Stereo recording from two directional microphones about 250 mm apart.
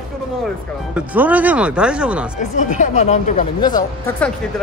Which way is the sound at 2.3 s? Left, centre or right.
Left.